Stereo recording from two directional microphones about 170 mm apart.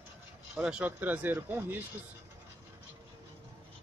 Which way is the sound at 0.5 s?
5° right (ahead or behind).